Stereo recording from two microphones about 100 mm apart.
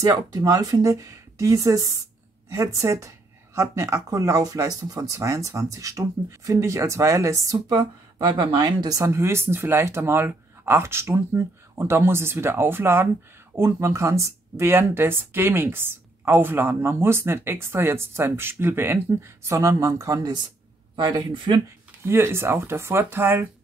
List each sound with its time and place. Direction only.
0.0 s speech: 35° right (ahead or behind)
8.9 s speech: 30° right (ahead or behind)
20.9 s speech: 50° right (ahead or behind)
22.0 s speech: 25° right (ahead or behind)